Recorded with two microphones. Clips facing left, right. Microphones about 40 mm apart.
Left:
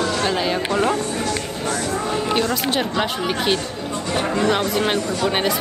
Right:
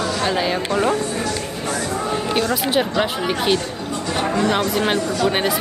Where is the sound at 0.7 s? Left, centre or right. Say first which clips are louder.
Even; left.